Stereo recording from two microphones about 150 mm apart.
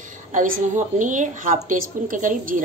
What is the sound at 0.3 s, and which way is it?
Speech, 55° right (ahead or behind).